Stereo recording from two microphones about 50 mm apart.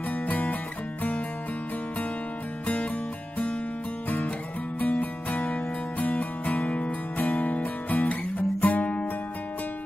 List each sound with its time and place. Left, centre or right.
0.1 s music: left
2.6 s music: left
4.7 s music: left